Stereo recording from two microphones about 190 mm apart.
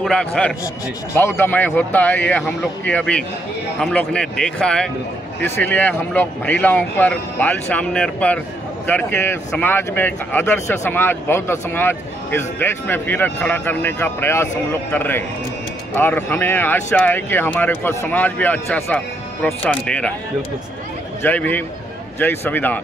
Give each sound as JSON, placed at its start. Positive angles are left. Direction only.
{"t": 0.0, "sound": "speech", "side_deg": 5}
{"t": 21.2, "sound": "speech", "side_deg": 10}